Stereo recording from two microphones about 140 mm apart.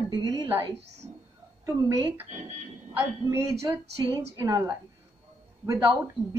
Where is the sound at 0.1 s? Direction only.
30° right (ahead or behind).